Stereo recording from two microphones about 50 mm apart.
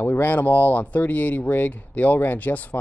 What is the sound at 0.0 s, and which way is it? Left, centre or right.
Speech, left.